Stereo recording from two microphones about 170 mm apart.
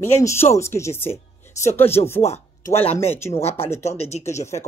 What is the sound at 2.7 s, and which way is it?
Speech, 35° left (ahead or behind).